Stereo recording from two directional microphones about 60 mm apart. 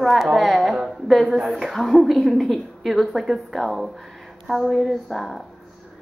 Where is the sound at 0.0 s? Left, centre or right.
Centre.